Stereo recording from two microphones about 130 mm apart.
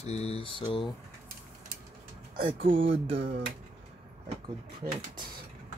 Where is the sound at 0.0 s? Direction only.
55° left (ahead or behind); by 0.9 s 40° left (ahead or behind).